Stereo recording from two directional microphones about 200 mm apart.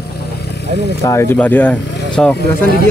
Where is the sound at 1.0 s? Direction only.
15° left (ahead or behind).